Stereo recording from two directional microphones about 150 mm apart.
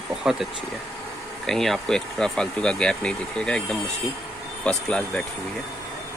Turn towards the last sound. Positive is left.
turn(degrees=5)  # may be behind; listen again after turning